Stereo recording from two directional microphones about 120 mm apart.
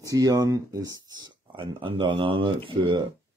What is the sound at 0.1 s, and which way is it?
Speech, 30° right (ahead or behind).